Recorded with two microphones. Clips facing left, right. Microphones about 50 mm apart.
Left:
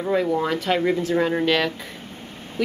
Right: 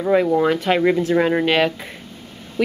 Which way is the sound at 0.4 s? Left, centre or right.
Right.